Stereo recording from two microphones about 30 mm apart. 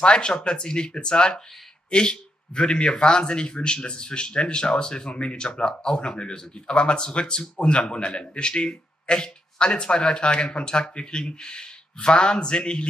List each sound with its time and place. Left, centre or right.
0.0 s speech: left